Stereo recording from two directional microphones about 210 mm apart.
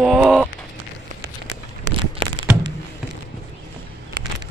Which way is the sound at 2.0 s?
20° right (ahead or behind).